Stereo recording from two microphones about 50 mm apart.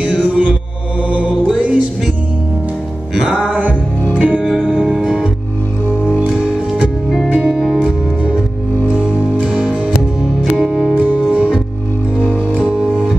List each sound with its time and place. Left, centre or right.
0.0 s music: right
1.0 s mantra: right
3.3 s music: right
7.3 s music: centre
8.2 s music: right
9.5 s music: centre
10.6 s music: centre
11.3 s music: right
12.5 s music: right